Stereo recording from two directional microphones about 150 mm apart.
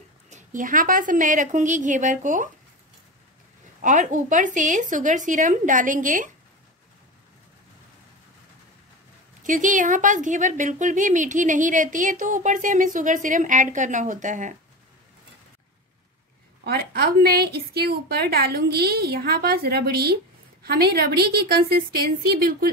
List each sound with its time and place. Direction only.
0.3 s a woman's voice: 55° right (ahead or behind)
3.8 s a woman's voice: 60° right (ahead or behind)
9.4 s a woman's voice: 60° right (ahead or behind)
16.6 s a woman's voice: 90° right